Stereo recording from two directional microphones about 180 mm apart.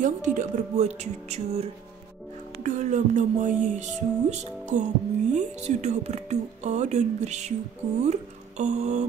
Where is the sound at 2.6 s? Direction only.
40° right (ahead or behind).